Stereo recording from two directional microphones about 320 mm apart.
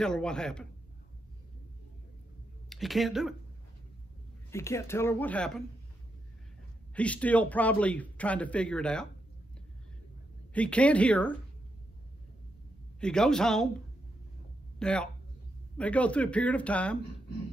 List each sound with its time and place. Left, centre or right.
0.0 s a man's voice: centre
2.7 s a man's voice: centre
4.5 s speech: centre
7.0 s a man's voice: centre
10.5 s a man's voice: centre
13.0 s a man's voice: centre
14.8 s a man's voice: centre